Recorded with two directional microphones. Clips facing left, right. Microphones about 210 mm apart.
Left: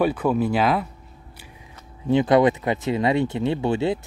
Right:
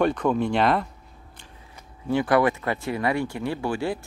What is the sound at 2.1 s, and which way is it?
Speech, 20° left (ahead or behind).